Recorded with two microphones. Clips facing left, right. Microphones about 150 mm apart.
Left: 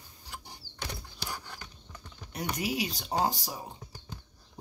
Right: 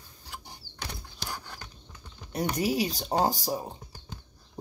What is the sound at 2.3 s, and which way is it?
Speech, 35° right (ahead or behind).